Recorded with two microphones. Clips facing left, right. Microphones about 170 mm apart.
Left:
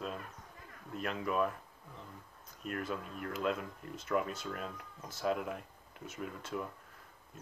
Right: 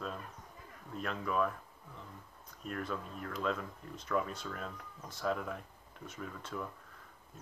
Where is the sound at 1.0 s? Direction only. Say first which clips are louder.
Left 1 dB; 10° left (ahead or behind).